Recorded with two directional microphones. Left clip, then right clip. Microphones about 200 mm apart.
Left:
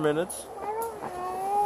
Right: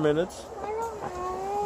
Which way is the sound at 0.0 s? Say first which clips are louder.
Right 1 dB; centre (ahead or behind).